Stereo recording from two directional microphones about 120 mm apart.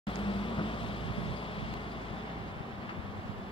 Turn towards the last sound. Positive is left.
turn(degrees=50)  # may be behind; listen again after turning